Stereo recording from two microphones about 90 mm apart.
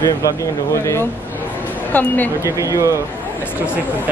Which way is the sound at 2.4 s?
35° right (ahead or behind).